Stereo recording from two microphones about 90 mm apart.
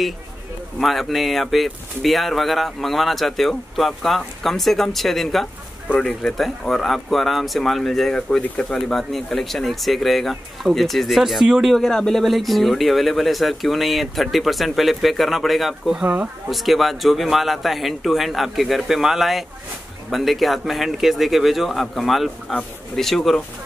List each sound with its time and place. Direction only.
0.7 s speech: centre (ahead or behind)